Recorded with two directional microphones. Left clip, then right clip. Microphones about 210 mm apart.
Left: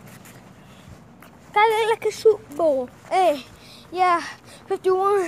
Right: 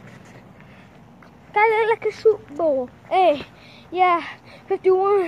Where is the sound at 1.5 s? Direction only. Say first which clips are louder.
Right 1 dB; 5° left (ahead or behind).